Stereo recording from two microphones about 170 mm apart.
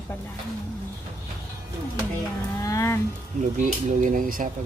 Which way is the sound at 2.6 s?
20° left (ahead or behind).